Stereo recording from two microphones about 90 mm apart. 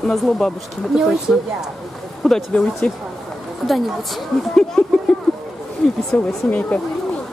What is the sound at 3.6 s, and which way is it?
Speech, centre (ahead or behind).